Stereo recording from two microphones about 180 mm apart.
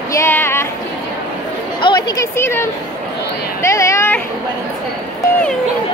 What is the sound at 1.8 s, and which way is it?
Speech, 25° left (ahead or behind).